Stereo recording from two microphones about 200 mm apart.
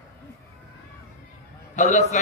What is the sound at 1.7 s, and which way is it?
Speech, 35° left (ahead or behind).